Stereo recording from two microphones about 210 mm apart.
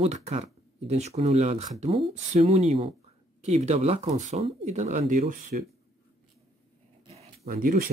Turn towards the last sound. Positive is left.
turn(degrees=-45)  # may be behind; listen again after turning